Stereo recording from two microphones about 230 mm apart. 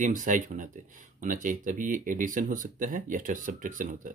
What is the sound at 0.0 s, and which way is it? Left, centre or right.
Speech, right.